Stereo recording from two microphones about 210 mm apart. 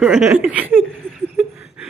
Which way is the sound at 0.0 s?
10° right (ahead or behind).